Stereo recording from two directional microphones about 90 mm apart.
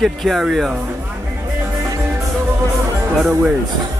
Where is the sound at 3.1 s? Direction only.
5° right (ahead or behind).